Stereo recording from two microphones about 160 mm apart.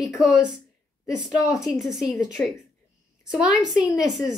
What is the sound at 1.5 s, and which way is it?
Speech, centre (ahead or behind).